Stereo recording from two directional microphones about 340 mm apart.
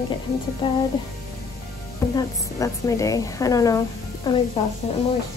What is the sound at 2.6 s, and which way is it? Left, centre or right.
Speech, centre.